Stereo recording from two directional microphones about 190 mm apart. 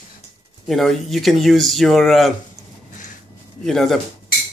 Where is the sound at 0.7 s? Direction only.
Centre (ahead or behind).